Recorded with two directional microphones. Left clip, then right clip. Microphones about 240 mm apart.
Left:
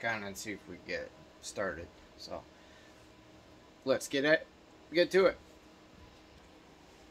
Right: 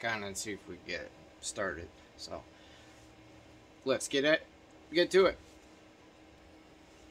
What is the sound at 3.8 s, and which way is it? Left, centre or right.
Speech, centre.